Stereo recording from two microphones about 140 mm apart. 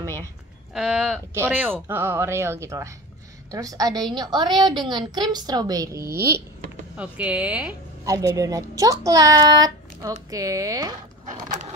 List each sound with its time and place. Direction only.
0.7 s a woman's voice: 5° right (ahead or behind)
8.0 s a woman's voice: 25° right (ahead or behind)